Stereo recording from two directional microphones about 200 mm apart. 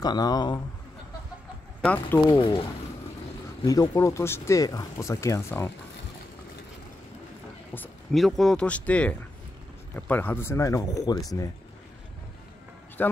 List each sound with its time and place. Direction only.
0.0 s speech: 20° left (ahead or behind)
1.8 s speech: 10° left (ahead or behind)
3.6 s speech: 20° left (ahead or behind)
7.7 s speech: 5° left (ahead or behind)
13.0 s a man's voice: 10° left (ahead or behind)